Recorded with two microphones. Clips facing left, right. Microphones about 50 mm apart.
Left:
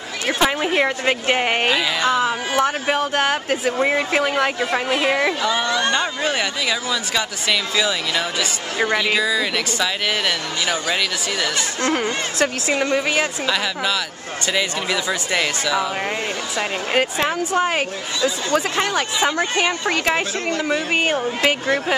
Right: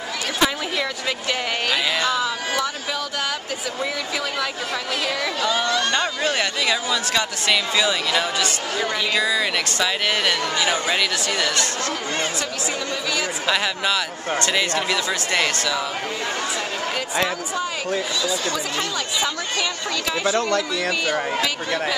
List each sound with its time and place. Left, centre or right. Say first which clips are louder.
0.4 s speech: left 4 dB; left
2.6 s speech: left 7 dB; left
4.9 s speech: left 6 dB; left
5.4 s speech: left 1 dB; centre
5.9 s speech: left 1 dB; centre
12.7 s speech: left 7 dB; left
14.4 s speech: left 1 dB; centre
17.6 s speech: left 3 dB; left